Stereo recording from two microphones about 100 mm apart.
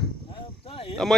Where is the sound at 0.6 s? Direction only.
65° left (ahead or behind).